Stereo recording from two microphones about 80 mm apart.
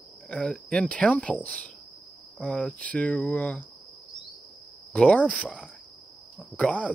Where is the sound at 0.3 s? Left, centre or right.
Centre.